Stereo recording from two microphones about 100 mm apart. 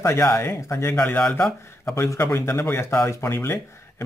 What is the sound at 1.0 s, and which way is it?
Speech, 15° left (ahead or behind).